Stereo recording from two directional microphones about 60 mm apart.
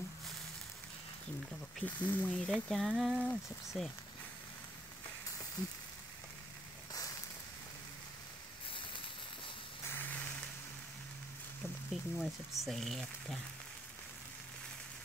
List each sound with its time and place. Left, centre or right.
1.9 s speech: left
2.3 s speech: centre
5.6 s frying: left
6.9 s a sound: left
9.8 s vehicle: left
11.9 s speech: centre